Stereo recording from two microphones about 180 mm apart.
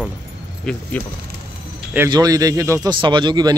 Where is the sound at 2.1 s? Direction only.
20° right (ahead or behind).